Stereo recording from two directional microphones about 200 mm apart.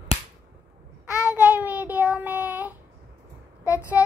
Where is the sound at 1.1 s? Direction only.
5° right (ahead or behind).